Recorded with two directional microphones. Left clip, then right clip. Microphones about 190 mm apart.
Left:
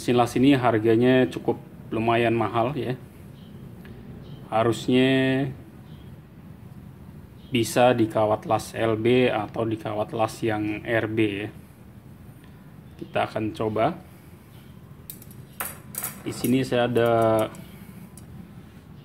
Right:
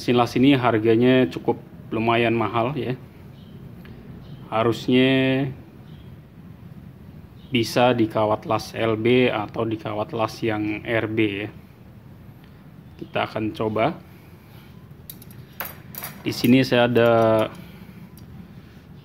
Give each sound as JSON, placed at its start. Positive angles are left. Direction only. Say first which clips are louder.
{"t": 0.0, "sound": "speech", "louder": "right 2 dB", "side_deg": -5}
{"t": 4.5, "sound": "speech", "louder": "right 1 dB", "side_deg": -5}
{"t": 7.5, "sound": "speech", "louder": "right 1 dB", "side_deg": -5}
{"t": 13.1, "sound": "speech", "louder": "right 1 dB", "side_deg": -5}
{"t": 16.3, "sound": "speech", "louder": "right 6 dB", "side_deg": -30}